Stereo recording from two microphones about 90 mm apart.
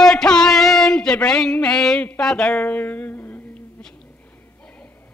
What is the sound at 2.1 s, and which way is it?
A woman's voice, 10° left (ahead or behind).